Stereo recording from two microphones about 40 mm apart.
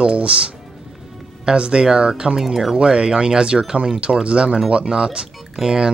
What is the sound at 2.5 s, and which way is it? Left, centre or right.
Speech, centre.